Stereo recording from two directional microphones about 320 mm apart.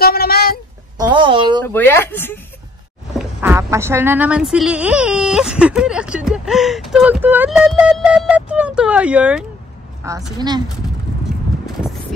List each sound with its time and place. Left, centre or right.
0.0 s a sound: left
0.9 s a woman's voice: centre
1.7 s speech: centre
3.2 s a woman's voice: centre